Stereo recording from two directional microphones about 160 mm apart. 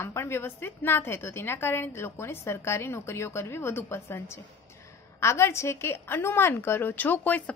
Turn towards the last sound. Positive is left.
turn(degrees=10)  # may be behind; listen again after turning